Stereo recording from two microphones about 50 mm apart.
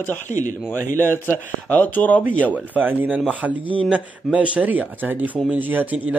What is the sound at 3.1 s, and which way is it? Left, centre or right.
Speech, right.